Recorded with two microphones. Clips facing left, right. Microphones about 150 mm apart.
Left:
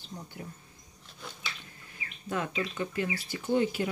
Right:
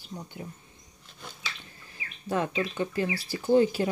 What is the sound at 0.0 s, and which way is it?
Speech, 20° right (ahead or behind).